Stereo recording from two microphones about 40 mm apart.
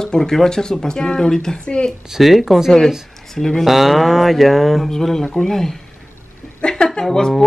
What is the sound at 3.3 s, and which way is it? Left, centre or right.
Speech, centre.